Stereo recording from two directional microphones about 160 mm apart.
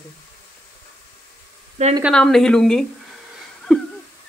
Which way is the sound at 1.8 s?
45° right (ahead or behind).